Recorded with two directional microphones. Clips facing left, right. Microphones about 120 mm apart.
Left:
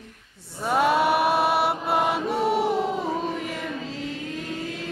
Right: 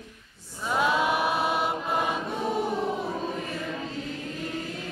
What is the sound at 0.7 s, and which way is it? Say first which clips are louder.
Chant: left 4 dB; 60° left (ahead or behind).